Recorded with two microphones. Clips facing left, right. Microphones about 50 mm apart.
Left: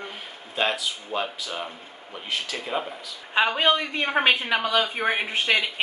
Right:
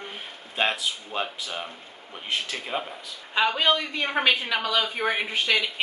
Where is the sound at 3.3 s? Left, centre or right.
Centre.